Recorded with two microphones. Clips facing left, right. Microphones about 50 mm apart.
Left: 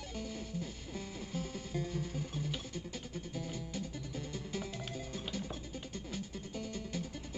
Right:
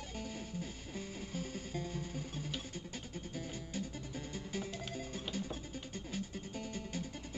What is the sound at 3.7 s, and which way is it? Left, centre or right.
Music, right.